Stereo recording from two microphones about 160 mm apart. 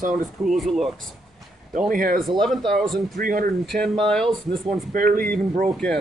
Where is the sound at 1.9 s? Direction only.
60° right (ahead or behind).